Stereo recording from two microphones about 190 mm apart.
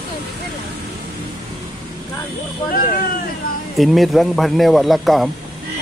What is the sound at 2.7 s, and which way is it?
Speech, 50° left (ahead or behind).